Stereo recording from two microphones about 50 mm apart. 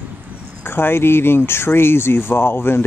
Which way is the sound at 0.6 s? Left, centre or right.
Left.